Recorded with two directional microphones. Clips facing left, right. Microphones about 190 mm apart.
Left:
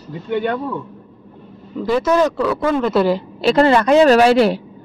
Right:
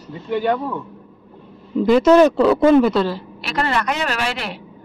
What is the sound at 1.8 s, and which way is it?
Speech, 20° right (ahead or behind).